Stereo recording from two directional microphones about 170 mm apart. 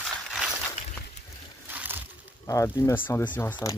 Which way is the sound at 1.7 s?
10° right (ahead or behind).